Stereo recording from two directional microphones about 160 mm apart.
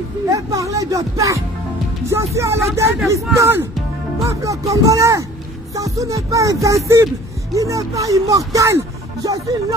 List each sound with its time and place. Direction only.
0.3 s speech: 20° right (ahead or behind)